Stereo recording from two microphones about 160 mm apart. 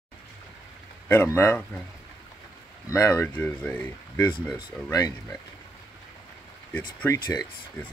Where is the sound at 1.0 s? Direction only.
15° left (ahead or behind).